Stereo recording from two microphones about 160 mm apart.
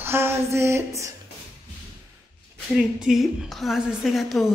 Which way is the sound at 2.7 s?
5° right (ahead or behind).